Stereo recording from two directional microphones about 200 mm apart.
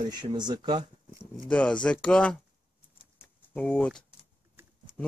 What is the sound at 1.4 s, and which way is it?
Speech, 5° left (ahead or behind).